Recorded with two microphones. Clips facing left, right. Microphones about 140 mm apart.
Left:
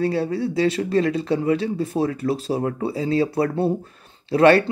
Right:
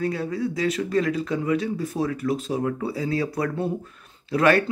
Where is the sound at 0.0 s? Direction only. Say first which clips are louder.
Left 4 dB; 30° left (ahead or behind).